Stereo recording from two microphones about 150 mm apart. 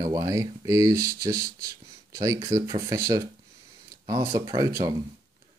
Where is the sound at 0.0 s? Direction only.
25° right (ahead or behind).